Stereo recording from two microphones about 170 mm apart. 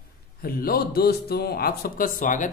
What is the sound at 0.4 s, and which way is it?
A man's voice, 60° left (ahead or behind).